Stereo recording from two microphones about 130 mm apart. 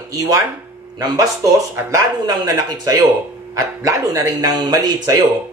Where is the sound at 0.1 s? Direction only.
25° right (ahead or behind).